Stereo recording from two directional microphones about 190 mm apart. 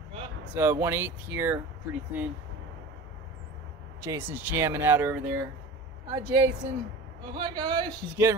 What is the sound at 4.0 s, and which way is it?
Speech, 10° right (ahead or behind).